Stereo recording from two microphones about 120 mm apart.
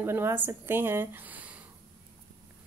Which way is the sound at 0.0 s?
20° right (ahead or behind).